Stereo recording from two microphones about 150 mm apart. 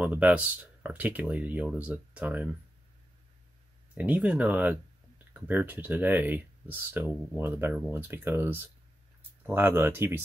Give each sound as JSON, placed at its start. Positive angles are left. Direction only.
{"t": 0.0, "sound": "speech", "side_deg": -10}
{"t": 3.9, "sound": "speech", "side_deg": -10}